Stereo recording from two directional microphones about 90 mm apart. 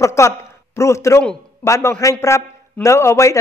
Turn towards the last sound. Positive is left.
turn(degrees=30)  # may be behind; listen again after turning